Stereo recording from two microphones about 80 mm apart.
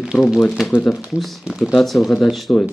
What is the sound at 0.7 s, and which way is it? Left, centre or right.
Speech, left.